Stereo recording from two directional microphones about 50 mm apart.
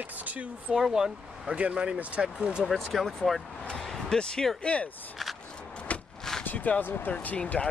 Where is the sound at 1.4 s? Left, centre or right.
Right.